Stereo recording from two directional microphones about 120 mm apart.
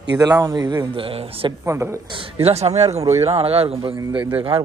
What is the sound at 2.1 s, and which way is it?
A man's voice, 50° right (ahead or behind).